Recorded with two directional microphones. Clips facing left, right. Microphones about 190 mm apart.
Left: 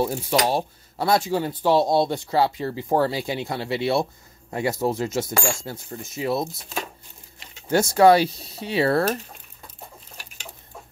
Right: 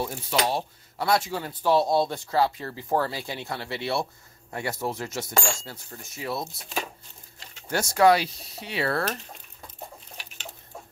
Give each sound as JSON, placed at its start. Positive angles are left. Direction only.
{"t": 0.0, "sound": "speech", "side_deg": 30}
{"t": 7.7, "sound": "speech", "side_deg": 25}